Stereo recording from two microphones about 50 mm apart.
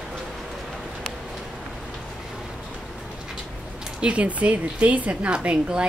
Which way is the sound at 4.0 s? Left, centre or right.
Right.